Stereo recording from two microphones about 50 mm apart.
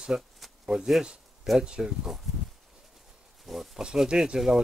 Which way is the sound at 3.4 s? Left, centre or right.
Centre.